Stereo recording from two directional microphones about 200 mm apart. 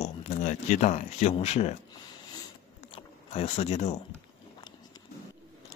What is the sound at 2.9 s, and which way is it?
Speech, 30° left (ahead or behind).